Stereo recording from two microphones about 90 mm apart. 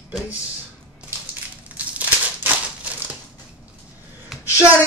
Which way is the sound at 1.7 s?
15° right (ahead or behind).